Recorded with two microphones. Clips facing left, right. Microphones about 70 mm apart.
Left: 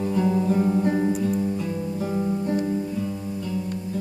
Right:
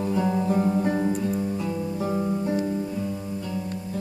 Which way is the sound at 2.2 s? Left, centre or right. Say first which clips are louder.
Left 2 dB; centre.